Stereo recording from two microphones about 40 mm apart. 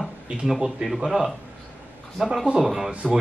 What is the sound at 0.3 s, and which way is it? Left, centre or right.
Speech, right.